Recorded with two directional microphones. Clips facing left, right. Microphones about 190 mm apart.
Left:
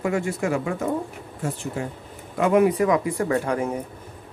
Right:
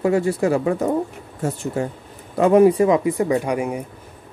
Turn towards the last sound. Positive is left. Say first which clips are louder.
# right 3 dB
turn(degrees=-15)  # may be behind; listen again after turning